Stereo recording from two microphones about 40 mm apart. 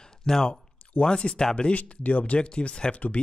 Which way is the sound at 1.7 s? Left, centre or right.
Left.